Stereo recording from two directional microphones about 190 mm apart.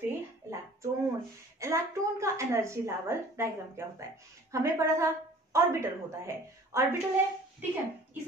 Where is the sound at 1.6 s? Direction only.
15° right (ahead or behind).